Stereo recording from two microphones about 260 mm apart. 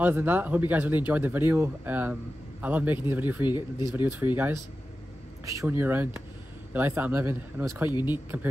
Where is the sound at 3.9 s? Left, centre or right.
Centre.